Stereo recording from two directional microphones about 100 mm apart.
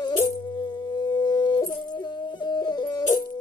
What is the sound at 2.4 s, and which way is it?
Music, 45° left (ahead or behind).